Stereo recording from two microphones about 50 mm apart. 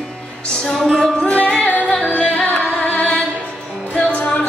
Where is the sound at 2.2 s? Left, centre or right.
Left.